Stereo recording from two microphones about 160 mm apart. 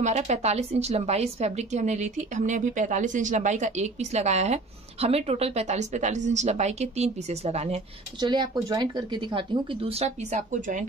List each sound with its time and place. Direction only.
0.0 s a woman's voice: 45° right (ahead or behind)
8.2 s speech: 30° right (ahead or behind); by 10.9 s 50° right (ahead or behind)